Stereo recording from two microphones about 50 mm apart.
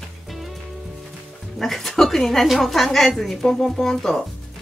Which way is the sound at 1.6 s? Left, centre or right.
Centre.